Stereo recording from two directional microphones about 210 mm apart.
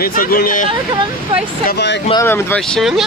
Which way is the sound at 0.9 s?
20° right (ahead or behind).